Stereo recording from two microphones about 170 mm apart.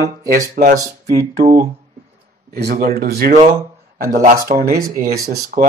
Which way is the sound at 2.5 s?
65° right (ahead or behind).